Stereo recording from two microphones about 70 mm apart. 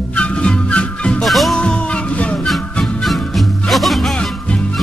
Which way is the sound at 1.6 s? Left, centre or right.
Centre.